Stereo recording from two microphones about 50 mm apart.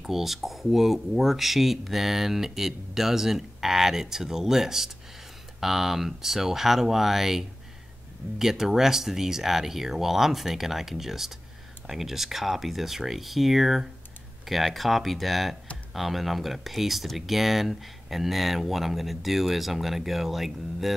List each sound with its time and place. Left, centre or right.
0.0 s speech: centre